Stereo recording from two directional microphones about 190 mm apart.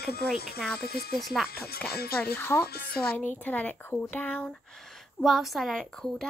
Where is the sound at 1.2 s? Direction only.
Centre (ahead or behind).